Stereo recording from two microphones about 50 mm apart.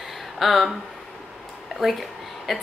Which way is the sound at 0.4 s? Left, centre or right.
Centre.